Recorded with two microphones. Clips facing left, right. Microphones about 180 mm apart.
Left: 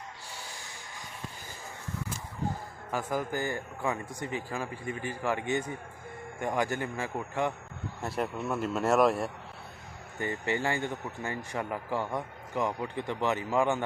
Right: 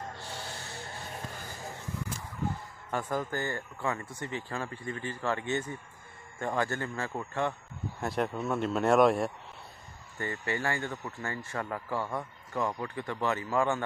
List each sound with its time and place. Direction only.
0.3 s vehicle: 10° left (ahead or behind)
2.9 s speech: 10° left (ahead or behind)
8.0 s speech: 5° left (ahead or behind)
10.1 s speech: 15° left (ahead or behind)